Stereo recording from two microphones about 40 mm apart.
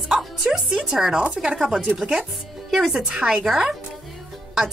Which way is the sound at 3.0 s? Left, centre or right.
Centre.